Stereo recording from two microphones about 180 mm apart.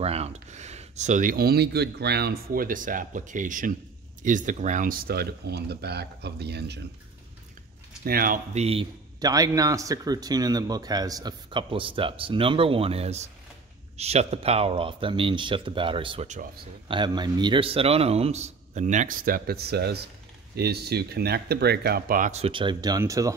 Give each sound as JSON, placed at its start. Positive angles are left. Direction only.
{"t": 0.0, "sound": "speech", "side_deg": -35}
{"t": 8.0, "sound": "speech", "side_deg": -55}
{"t": 8.5, "sound": "a man's voice", "side_deg": -35}
{"t": 9.2, "sound": "a man's voice", "side_deg": -20}